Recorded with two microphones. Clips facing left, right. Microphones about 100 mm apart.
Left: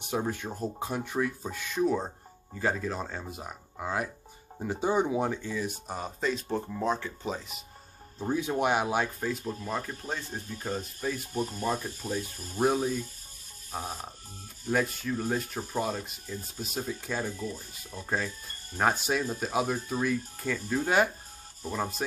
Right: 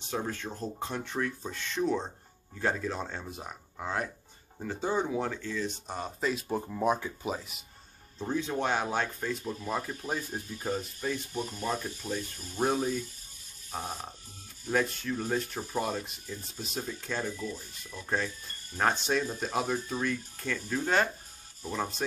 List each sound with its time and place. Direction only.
0.0 s speech: 15° left (ahead or behind)
4.6 s speech: 15° left (ahead or behind); by 7.6 s 5° right (ahead or behind)
8.2 s speech: 10° left (ahead or behind); by 10.8 s 10° right (ahead or behind)
11.0 s speech: 5° left (ahead or behind)
17.4 s speech: 35° left (ahead or behind)
18.0 s speech: 5° left (ahead or behind)